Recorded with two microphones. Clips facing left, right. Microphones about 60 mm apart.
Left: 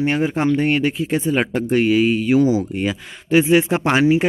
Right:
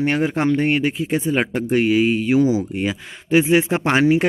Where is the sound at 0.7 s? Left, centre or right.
Centre; by 4.0 s right.